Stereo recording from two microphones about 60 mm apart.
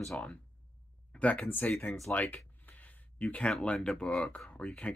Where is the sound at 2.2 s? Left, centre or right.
Left.